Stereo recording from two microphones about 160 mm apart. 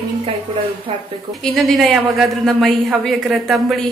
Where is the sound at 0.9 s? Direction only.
35° right (ahead or behind).